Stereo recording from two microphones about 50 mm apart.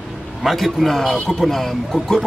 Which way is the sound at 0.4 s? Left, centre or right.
Centre.